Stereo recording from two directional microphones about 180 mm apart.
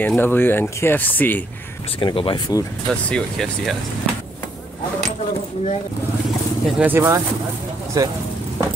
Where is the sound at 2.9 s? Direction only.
5° left (ahead or behind).